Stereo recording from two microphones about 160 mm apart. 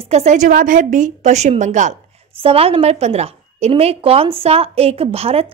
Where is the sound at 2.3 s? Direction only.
35° right (ahead or behind).